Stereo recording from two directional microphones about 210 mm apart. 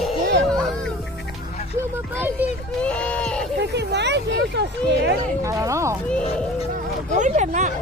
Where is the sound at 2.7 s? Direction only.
5° left (ahead or behind).